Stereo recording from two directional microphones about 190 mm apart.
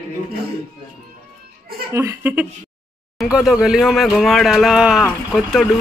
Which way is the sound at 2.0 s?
10° right (ahead or behind).